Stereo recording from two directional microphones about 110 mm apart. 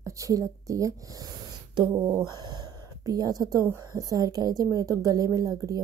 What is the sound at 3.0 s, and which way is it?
A woman's voice, 35° right (ahead or behind).